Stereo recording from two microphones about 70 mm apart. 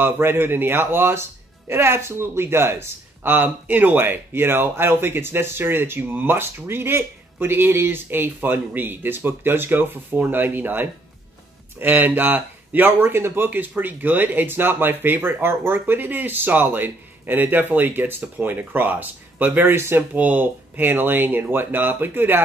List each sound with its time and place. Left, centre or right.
0.0 s a man's voice: right
20.2 s a man's voice: right